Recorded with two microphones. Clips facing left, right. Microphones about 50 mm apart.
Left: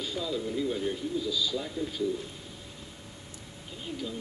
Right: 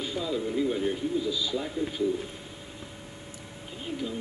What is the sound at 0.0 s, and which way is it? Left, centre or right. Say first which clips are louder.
A man's voice: right 2 dB; centre.